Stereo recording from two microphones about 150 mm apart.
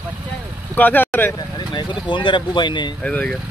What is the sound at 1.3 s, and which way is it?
Speech, 30° left (ahead or behind).